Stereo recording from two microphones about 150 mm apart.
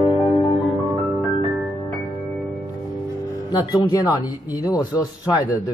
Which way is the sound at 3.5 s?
25° left (ahead or behind).